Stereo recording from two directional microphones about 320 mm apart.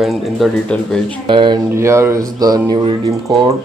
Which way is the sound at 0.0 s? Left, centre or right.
Centre.